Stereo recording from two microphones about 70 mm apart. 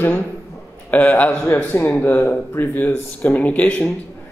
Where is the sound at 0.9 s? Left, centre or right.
Left.